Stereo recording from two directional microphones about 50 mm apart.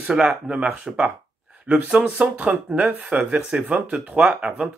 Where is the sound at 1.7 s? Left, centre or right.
Right.